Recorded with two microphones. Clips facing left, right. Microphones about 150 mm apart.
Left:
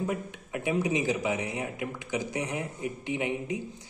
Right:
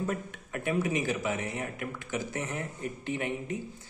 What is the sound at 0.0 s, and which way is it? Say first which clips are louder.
Speech: left 1 dB; 15° left (ahead or behind).